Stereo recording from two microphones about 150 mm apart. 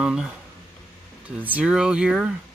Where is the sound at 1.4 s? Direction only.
10° right (ahead or behind).